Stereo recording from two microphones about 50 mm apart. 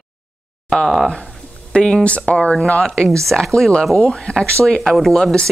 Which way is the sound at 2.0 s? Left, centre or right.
Left.